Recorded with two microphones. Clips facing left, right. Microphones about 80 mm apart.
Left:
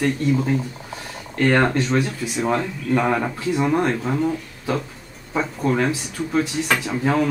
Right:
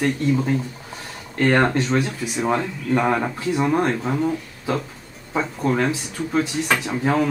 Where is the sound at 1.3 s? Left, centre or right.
Centre.